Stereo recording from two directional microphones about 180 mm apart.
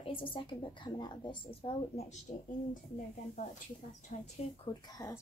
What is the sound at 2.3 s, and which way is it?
Speech, 45° left (ahead or behind).